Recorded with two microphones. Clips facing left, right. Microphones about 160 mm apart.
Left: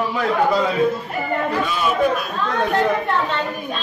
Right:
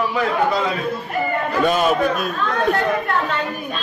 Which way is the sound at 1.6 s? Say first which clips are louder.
Right 5 dB; 50° right (ahead or behind).